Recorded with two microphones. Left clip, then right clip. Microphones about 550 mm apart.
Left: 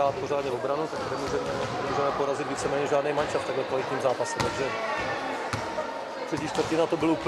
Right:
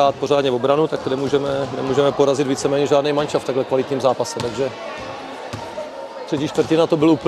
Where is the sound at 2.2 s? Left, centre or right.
Right.